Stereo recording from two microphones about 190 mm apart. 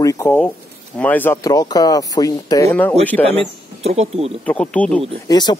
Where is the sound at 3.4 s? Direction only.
35° right (ahead or behind).